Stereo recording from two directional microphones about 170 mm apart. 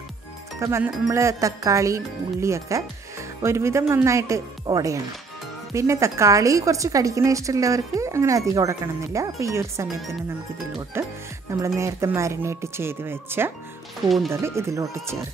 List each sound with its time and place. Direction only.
0.6 s speech: 15° right (ahead or behind)
10.9 s speech: 15° right (ahead or behind)
14.0 s speech: centre (ahead or behind)
14.3 s speech: 15° right (ahead or behind)